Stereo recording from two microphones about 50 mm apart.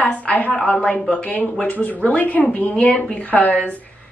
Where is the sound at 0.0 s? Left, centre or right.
Left.